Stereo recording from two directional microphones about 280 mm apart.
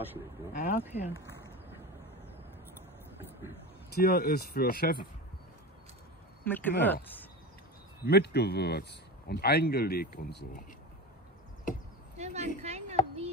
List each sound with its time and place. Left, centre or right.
0.5 s speech: left
3.9 s speech: left
6.4 s speech: centre
8.0 s speech: left
12.2 s a sound: right